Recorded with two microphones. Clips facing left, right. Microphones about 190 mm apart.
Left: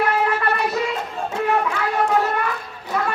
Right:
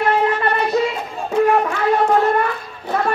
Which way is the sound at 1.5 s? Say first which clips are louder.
Right 4 dB; 45° right (ahead or behind).